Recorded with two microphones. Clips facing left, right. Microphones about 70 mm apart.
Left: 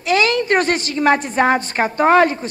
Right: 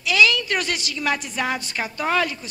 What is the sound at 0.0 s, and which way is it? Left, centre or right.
A woman's voice, left.